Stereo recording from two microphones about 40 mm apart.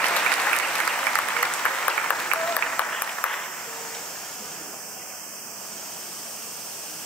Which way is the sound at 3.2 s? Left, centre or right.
Left.